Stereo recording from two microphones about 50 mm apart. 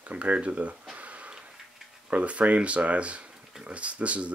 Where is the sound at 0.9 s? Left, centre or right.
Right.